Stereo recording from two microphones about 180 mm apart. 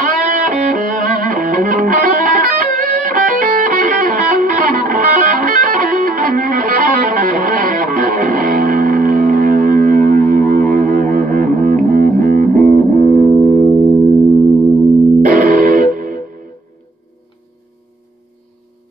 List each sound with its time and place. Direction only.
0.0 s music: 45° right (ahead or behind)
15.2 s music: 45° right (ahead or behind)